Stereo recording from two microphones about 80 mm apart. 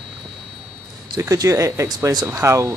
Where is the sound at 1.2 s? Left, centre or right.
Right.